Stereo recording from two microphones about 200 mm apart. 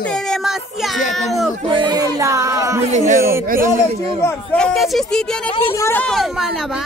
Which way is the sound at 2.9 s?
40° right (ahead or behind).